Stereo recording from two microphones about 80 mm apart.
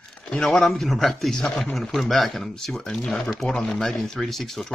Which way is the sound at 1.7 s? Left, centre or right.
Centre.